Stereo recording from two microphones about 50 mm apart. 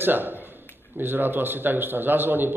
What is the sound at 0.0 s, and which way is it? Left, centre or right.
A man's voice, right.